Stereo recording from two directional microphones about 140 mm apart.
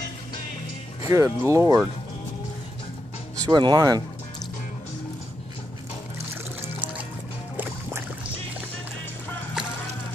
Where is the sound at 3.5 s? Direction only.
30° right (ahead or behind).